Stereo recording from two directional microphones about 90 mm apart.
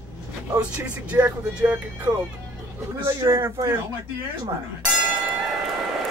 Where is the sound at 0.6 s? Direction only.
15° right (ahead or behind).